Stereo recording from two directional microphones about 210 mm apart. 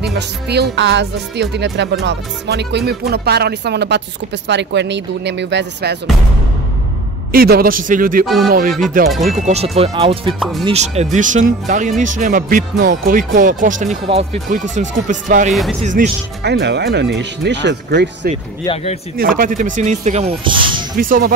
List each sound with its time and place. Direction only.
0.0 s speech: 50° right (ahead or behind)
7.3 s speech: 45° right (ahead or behind)
9.1 s speech: centre (ahead or behind)
9.5 s speech: 30° right (ahead or behind)
16.4 s speech: 55° right (ahead or behind)
19.1 s speech: 45° right (ahead or behind); by 20.8 s 25° right (ahead or behind)
21.0 s speech: 40° right (ahead or behind)